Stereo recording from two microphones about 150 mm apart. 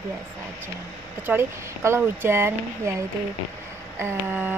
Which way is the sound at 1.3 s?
15° right (ahead or behind).